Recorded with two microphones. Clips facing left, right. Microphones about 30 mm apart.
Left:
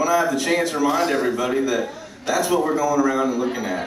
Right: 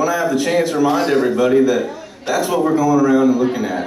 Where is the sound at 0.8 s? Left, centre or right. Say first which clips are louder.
Right 4 dB; right.